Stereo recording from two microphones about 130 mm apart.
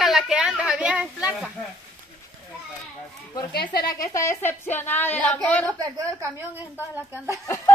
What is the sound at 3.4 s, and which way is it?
A woman's voice, 25° left (ahead or behind).